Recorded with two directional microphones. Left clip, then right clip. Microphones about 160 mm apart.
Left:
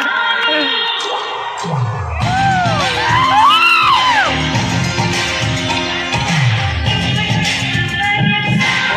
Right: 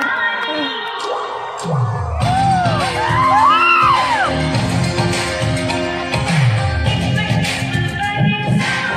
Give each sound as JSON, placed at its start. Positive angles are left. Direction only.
{"t": 3.2, "sound": "music", "side_deg": -60}